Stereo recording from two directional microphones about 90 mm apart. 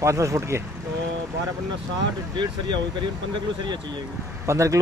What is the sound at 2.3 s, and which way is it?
Speech, 55° right (ahead or behind).